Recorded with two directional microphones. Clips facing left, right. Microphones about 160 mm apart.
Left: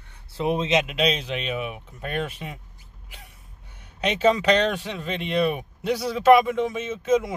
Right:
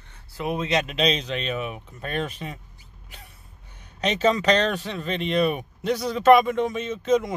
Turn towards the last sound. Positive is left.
turn(degrees=5)  # may be behind; listen again after turning